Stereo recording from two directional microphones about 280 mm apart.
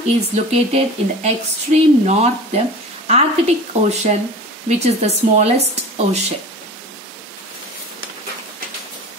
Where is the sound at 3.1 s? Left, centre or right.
Right.